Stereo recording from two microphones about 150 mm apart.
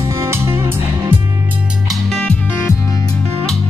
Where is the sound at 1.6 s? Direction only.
5° right (ahead or behind).